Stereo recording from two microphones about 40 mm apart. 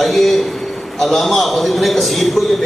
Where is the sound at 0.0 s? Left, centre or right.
Centre.